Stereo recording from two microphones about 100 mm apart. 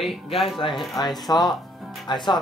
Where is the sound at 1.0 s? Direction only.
45° left (ahead or behind).